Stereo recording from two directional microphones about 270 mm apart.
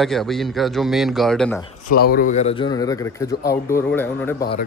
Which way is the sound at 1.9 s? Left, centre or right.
Left.